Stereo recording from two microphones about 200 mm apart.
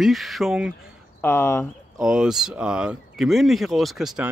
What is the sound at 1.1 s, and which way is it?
Speech, 10° left (ahead or behind).